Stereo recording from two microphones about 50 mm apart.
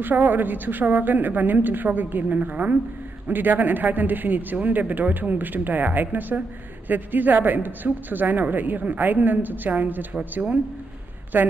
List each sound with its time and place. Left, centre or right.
0.0 s speech: right
11.3 s speech: right